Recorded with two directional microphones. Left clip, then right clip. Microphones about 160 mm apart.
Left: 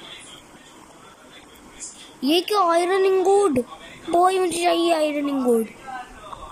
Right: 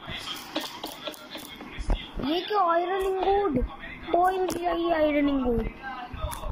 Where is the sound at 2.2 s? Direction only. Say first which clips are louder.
Left 6 dB; 20° left (ahead or behind).